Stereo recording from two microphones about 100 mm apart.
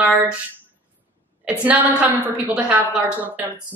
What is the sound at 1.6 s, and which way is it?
Speech, 15° right (ahead or behind).